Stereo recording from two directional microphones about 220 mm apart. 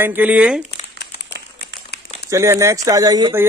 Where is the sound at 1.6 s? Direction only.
45° left (ahead or behind).